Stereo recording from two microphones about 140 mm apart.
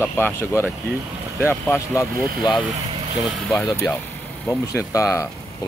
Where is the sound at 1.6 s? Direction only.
20° left (ahead or behind).